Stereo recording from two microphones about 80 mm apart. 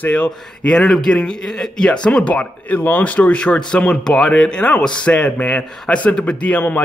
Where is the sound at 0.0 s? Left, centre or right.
Centre.